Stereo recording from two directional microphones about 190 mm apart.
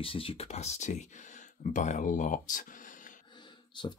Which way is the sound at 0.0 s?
30° left (ahead or behind).